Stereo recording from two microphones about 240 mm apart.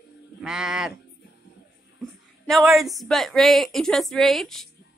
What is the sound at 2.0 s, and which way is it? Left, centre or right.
Speech, centre.